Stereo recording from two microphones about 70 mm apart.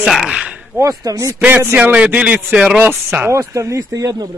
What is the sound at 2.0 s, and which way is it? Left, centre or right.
Speech, centre.